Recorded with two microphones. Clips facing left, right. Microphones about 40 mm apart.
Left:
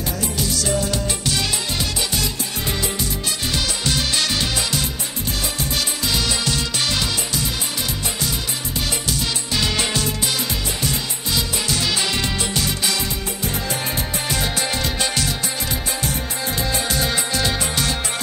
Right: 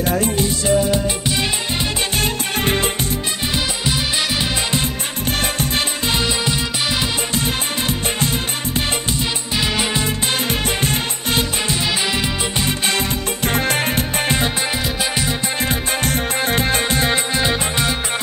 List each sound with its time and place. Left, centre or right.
0.0 s music: right
2.1 s music: right
3.5 s music: centre
5.4 s music: right
6.2 s music: right
8.2 s music: right
9.6 s music: centre
10.0 s music: right
11.6 s music: right
12.5 s music: right
13.4 s music: right
15.7 s music: right